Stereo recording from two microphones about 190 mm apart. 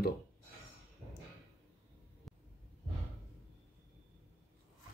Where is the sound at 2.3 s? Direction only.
Centre (ahead or behind).